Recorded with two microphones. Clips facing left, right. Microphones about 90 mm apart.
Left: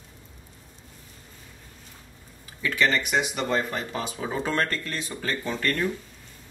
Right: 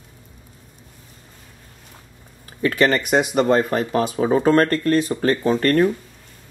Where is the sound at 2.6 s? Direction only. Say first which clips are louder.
Right 6 dB; 50° right (ahead or behind).